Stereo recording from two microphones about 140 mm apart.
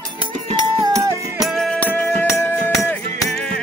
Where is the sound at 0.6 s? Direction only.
25° right (ahead or behind).